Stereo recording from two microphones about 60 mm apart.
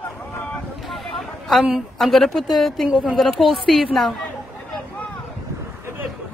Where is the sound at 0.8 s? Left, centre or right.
Centre.